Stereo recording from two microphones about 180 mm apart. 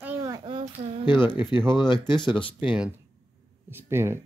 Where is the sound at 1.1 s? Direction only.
25° left (ahead or behind).